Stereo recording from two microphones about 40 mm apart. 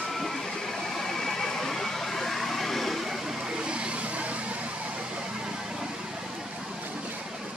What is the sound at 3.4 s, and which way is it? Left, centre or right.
Vehicle, right.